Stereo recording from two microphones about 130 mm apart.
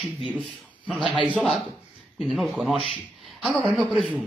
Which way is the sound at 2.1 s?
Centre (ahead or behind).